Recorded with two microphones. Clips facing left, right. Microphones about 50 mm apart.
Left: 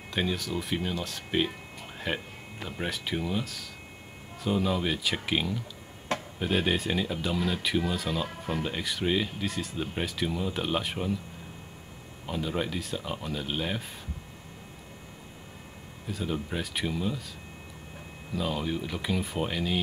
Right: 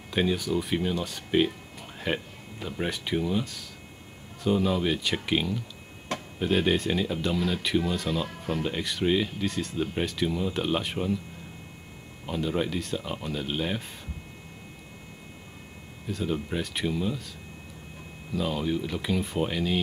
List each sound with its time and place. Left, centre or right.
0.1 s speech: centre
12.3 s speech: centre
16.1 s speech: centre
18.3 s speech: centre